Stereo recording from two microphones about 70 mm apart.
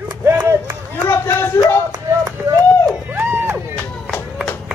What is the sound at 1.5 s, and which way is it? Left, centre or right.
Speech, left.